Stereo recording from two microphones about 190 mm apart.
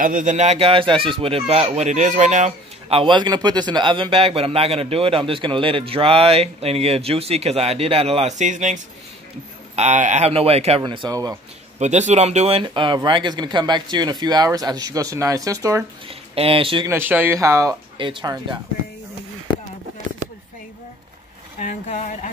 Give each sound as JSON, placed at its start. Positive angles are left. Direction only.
{"t": 0.0, "sound": "speech", "side_deg": -45}
{"t": 11.8, "sound": "speech", "side_deg": -35}
{"t": 16.1, "sound": "speech", "side_deg": -30}
{"t": 16.9, "sound": "speech", "side_deg": -10}
{"t": 21.5, "sound": "speech", "side_deg": 40}